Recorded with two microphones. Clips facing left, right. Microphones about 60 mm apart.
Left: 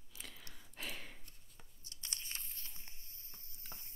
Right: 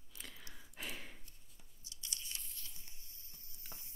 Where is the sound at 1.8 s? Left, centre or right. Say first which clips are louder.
Left 1 dB; left.